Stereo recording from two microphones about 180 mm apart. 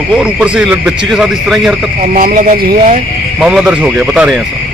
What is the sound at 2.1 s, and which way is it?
Speech, 50° right (ahead or behind).